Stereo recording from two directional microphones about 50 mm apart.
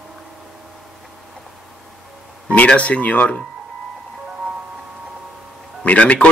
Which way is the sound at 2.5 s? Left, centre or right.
Left.